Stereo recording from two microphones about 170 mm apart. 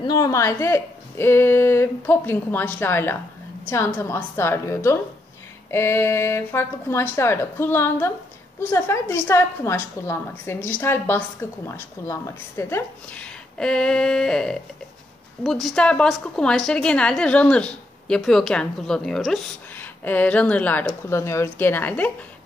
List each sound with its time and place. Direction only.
0.0 s a woman's voice: 20° left (ahead or behind)